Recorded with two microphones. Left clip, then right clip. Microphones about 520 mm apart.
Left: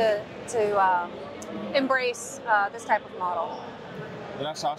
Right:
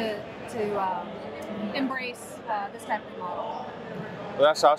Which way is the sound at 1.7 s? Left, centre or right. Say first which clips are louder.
Left 8 dB; left.